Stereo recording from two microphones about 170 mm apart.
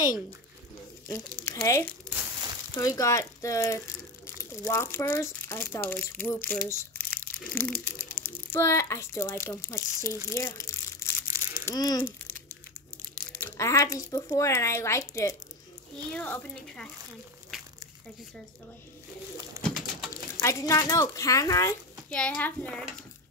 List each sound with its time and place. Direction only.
1.4 s a child's voice: 20° left (ahead or behind)
10.3 s crumpling: 20° left (ahead or behind)
11.6 s speech: 20° left (ahead or behind)
13.4 s a child's voice: 15° left (ahead or behind)
19.6 s bird: centre (ahead or behind)
20.3 s a child's voice: 15° left (ahead or behind)
22.1 s a child's voice: 10° left (ahead or behind)